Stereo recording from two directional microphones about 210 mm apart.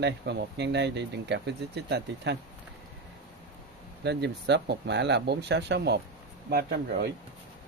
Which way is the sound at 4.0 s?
55° right (ahead or behind).